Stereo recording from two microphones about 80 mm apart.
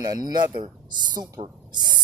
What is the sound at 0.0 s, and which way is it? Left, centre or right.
Speech, right.